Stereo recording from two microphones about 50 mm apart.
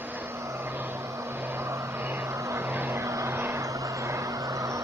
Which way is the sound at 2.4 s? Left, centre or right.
Right.